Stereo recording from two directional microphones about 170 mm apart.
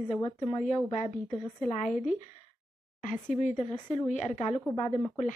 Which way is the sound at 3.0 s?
50° left (ahead or behind).